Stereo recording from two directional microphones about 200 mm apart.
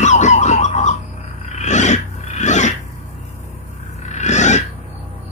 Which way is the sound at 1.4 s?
35° left (ahead or behind).